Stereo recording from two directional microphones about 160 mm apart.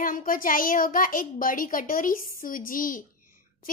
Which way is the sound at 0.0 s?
60° left (ahead or behind).